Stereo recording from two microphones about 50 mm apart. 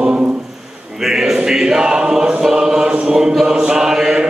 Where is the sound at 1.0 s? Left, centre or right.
Centre.